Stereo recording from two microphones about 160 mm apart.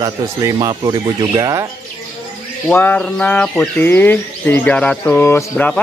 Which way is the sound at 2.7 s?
10° left (ahead or behind).